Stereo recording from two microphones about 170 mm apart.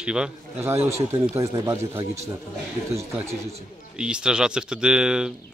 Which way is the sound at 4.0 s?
5° right (ahead or behind).